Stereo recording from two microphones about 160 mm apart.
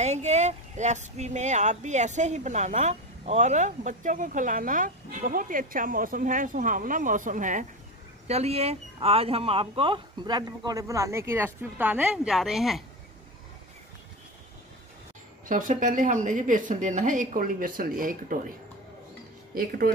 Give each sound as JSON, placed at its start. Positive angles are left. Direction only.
{"t": 0.0, "sound": "speech", "side_deg": -45}
{"t": 8.3, "sound": "speech", "side_deg": -40}
{"t": 15.4, "sound": "speech", "side_deg": -55}
{"t": 19.5, "sound": "speech", "side_deg": -65}